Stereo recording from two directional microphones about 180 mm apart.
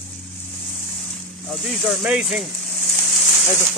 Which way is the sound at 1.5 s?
Centre (ahead or behind).